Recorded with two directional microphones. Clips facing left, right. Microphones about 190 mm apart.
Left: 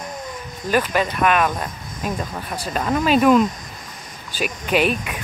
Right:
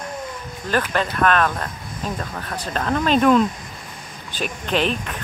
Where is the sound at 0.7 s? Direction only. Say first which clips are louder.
Left 2 dB; 10° left (ahead or behind).